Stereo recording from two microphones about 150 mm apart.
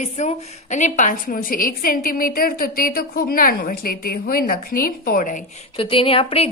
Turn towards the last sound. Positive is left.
turn(degrees=40)  # may be behind; listen again after turning